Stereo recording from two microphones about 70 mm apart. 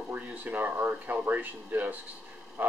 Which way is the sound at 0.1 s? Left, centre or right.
Right.